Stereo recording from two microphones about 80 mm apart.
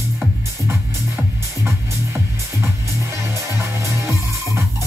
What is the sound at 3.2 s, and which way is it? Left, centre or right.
Music, right.